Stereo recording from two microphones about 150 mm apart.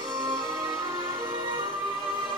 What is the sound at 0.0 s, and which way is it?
Music, 30° right (ahead or behind).